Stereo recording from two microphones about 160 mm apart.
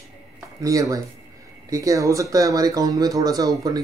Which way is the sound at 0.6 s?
20° right (ahead or behind).